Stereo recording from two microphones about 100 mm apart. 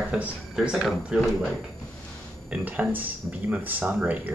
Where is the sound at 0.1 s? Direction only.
10° right (ahead or behind).